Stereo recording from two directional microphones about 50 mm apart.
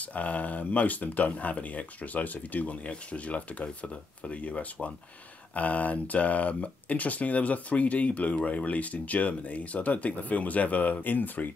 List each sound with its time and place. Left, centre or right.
0.0 s speech: left